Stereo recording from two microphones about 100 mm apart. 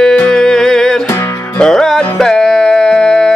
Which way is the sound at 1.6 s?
5° left (ahead or behind).